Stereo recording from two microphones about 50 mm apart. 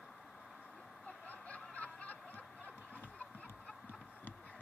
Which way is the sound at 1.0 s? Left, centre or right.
Left.